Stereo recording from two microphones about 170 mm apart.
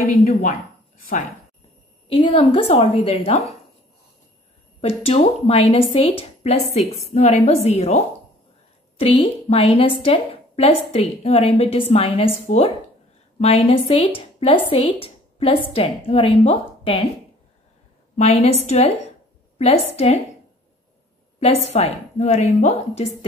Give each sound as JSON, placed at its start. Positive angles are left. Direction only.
{"t": 0.0, "sound": "a woman's voice", "side_deg": 40}
{"t": 2.0, "sound": "a woman's voice", "side_deg": 35}
{"t": 5.0, "sound": "a woman's voice", "side_deg": 35}
{"t": 18.1, "sound": "a woman's voice", "side_deg": 40}
{"t": 21.4, "sound": "a woman's voice", "side_deg": 35}